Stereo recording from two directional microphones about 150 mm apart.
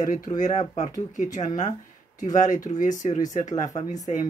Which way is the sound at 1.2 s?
25° left (ahead or behind).